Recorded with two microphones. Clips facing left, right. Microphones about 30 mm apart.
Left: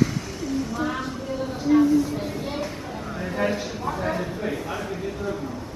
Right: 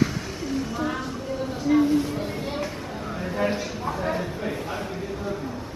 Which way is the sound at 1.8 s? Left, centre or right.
Right.